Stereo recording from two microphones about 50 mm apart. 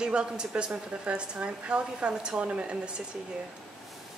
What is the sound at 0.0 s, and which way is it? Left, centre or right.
A woman's voice, centre.